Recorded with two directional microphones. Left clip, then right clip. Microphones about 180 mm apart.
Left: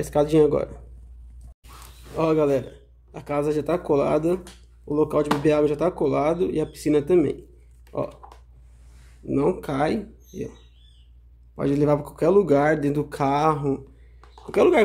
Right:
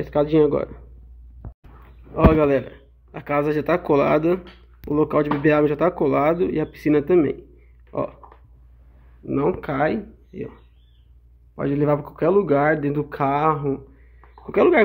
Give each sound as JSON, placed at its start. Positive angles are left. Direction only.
{"t": 0.0, "sound": "speech", "side_deg": 15}
{"t": 2.1, "sound": "speech", "side_deg": 5}
{"t": 9.2, "sound": "speech", "side_deg": 15}
{"t": 11.5, "sound": "speech", "side_deg": 20}
{"t": 14.4, "sound": "speech", "side_deg": 10}